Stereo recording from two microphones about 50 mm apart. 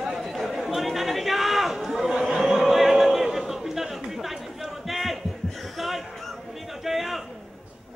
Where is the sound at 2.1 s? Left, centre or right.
Centre.